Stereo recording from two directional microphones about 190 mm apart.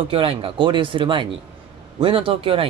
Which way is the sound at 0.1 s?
30° right (ahead or behind).